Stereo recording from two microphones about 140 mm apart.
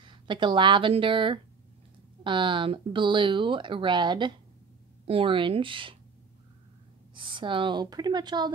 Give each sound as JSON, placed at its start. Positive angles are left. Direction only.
{"t": 0.0, "sound": "speech", "side_deg": -35}
{"t": 7.2, "sound": "speech", "side_deg": -35}